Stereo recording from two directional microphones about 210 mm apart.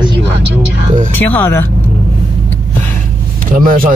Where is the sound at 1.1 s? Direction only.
10° left (ahead or behind).